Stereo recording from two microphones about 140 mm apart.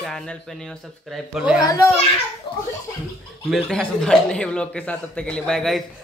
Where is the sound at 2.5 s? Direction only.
35° left (ahead or behind).